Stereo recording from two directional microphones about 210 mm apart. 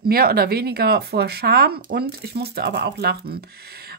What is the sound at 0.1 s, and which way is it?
Speech, 45° right (ahead or behind).